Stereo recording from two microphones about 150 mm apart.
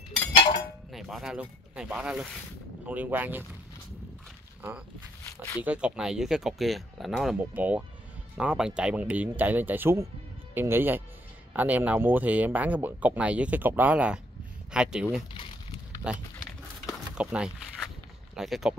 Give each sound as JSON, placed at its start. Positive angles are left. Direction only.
{"t": 0.9, "sound": "speech", "side_deg": 0}
{"t": 5.6, "sound": "speech", "side_deg": -10}
{"t": 15.3, "sound": "a sound", "side_deg": 35}
{"t": 16.1, "sound": "speech", "side_deg": -5}
{"t": 16.8, "sound": "a sound", "side_deg": -5}
{"t": 18.3, "sound": "speech", "side_deg": 0}